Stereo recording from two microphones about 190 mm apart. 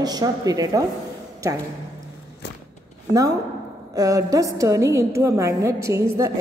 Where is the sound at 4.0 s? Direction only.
15° right (ahead or behind).